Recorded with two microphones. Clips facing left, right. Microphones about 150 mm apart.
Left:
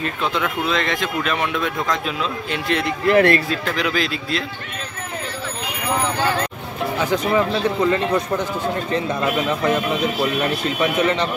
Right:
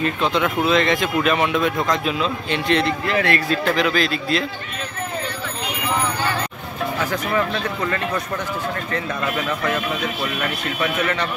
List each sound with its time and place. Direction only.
0.2 s speech: centre (ahead or behind)
3.1 s speech: 55° left (ahead or behind)
3.8 s speech: 10° left (ahead or behind)
7.2 s speech: 20° left (ahead or behind)